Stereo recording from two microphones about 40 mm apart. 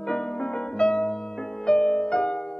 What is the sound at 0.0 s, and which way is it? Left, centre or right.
Music, centre.